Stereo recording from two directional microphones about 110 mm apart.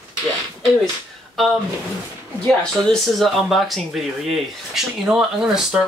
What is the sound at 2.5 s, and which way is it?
Speech, 5° left (ahead or behind).